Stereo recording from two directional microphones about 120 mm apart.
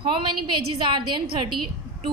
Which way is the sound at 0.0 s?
40° right (ahead or behind).